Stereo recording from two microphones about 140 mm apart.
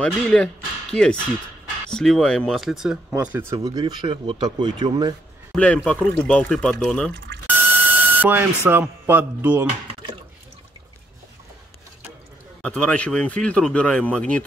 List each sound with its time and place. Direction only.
0.0 s speech: 5° left (ahead or behind)
1.9 s speech: 5° left (ahead or behind)
3.1 s speech: 15° right (ahead or behind)
3.8 s speech: 35° right (ahead or behind)
5.5 s speech: 10° left (ahead or behind)
7.4 s a sound: 15° right (ahead or behind)
8.6 s speech: 15° right (ahead or behind)
12.6 s speech: 10° left (ahead or behind)